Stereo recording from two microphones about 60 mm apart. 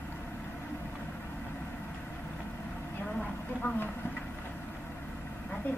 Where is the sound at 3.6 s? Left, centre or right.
Left.